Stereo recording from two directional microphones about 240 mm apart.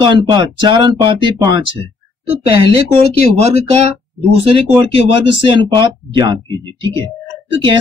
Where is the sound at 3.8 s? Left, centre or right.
Right.